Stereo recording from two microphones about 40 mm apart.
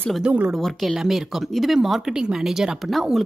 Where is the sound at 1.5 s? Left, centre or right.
Centre.